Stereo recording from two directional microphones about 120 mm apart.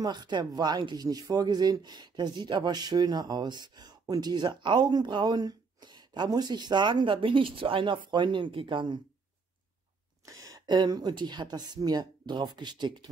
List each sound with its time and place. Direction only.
0.0 s speech: 35° right (ahead or behind)
10.2 s speech: 30° right (ahead or behind)